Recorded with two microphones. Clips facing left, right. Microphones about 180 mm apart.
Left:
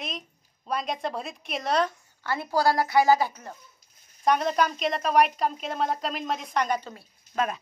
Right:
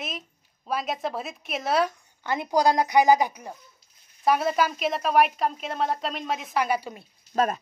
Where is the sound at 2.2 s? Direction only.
20° right (ahead or behind).